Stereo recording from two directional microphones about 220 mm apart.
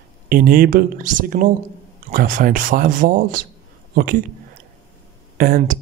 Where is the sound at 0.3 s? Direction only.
40° right (ahead or behind).